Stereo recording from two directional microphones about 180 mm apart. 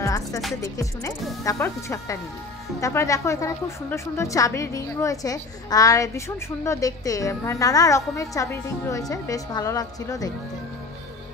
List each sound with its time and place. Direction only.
0.0 s music: 20° left (ahead or behind)
0.6 s a woman's voice: 15° left (ahead or behind)